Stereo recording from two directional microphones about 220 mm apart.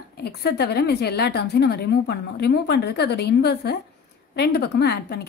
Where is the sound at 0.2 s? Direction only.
45° left (ahead or behind).